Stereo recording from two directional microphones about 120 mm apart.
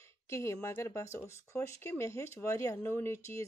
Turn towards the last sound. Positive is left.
turn(degrees=25)  # may be behind; listen again after turning